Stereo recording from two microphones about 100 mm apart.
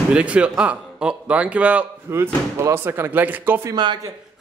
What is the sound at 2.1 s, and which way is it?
Speech, 25° right (ahead or behind).